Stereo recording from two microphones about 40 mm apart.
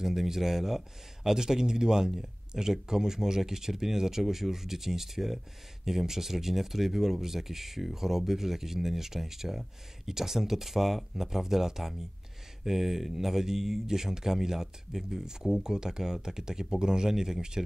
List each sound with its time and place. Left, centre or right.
0.0 s speech: centre